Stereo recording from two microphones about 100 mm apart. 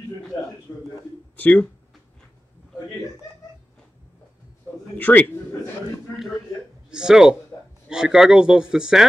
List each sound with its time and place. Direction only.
1.3 s speech: 15° left (ahead or behind)
4.9 s a man's voice: 15° left (ahead or behind)
6.9 s speech: 5° right (ahead or behind)